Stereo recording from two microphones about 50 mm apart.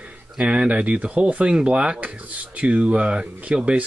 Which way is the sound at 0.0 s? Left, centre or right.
Right.